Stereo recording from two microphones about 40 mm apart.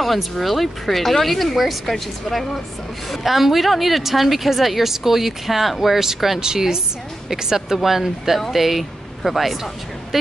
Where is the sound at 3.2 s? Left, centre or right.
Centre.